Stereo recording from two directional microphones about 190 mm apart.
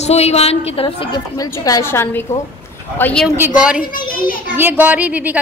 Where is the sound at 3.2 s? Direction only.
10° right (ahead or behind).